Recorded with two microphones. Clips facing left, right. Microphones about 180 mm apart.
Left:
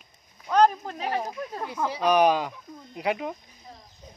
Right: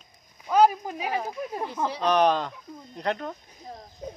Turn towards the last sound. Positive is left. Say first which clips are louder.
# right 12 dB
turn(degrees=-65)  # may be behind; listen again after turning